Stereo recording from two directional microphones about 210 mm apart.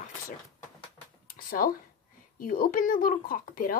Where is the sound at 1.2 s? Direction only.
45° left (ahead or behind).